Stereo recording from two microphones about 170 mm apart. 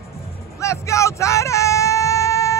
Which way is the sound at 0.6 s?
15° left (ahead or behind).